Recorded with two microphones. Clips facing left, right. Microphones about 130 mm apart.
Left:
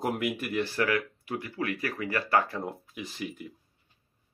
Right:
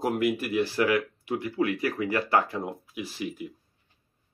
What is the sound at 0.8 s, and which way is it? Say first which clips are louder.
Speech: right 3 dB; 20° right (ahead or behind).